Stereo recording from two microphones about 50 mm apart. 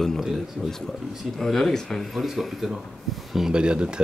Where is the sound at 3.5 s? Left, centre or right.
Centre.